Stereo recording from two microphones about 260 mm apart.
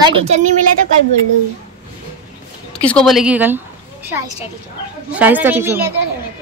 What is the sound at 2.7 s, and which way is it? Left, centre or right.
Speech, centre.